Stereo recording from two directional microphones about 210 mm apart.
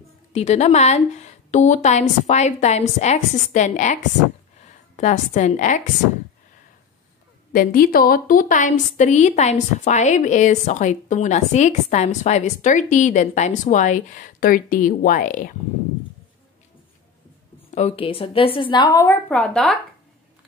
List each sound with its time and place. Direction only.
0.3 s a woman's voice: 30° left (ahead or behind)
7.5 s a woman's voice: 45° left (ahead or behind)
17.6 s a woman's voice: 30° left (ahead or behind); by 19.8 s 5° left (ahead or behind)